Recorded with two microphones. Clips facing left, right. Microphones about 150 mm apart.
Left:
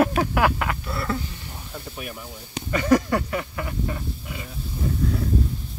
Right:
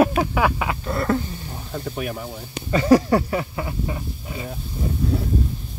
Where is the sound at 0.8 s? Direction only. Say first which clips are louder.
Right 6 dB; 45° right (ahead or behind).